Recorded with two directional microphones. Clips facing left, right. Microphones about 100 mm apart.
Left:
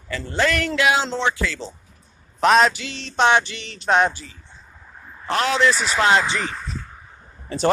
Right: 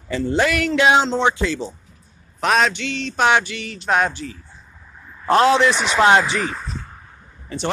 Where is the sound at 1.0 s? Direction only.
15° right (ahead or behind).